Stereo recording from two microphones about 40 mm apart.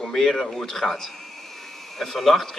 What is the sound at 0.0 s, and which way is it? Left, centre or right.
A man's voice, centre.